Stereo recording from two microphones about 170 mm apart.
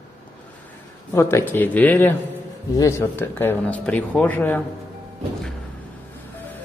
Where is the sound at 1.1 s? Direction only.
15° left (ahead or behind).